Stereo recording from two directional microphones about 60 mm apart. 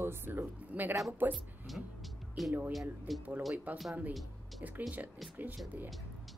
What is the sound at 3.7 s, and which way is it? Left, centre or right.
Speech, right.